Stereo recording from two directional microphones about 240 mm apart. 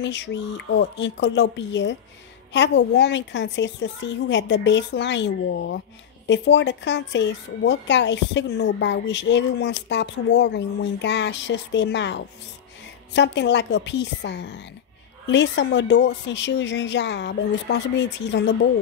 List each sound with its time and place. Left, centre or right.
0.0 s speech: left